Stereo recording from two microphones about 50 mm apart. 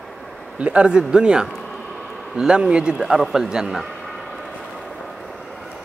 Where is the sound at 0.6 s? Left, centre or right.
Right.